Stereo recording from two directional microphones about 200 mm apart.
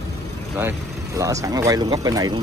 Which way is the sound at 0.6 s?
15° right (ahead or behind).